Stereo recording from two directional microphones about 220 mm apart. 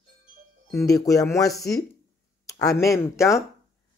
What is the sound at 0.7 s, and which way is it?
A woman's voice, 15° left (ahead or behind).